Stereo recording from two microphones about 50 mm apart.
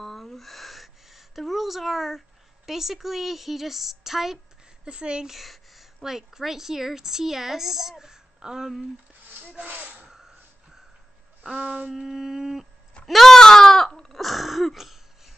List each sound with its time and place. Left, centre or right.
0.0 s a sound: centre
4.8 s speech: right
5.3 s a woman's voice: centre
9.6 s speech: right
10.0 s a sound: centre
11.4 s a woman's voice: centre
11.9 s a woman's voice: centre
13.0 s sheep: centre